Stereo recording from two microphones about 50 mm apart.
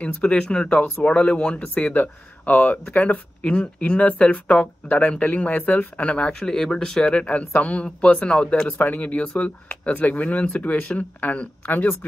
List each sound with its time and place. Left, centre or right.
0.0 s speech: left
2.9 s speech: left
6.5 s speech: centre; by 11.9 s left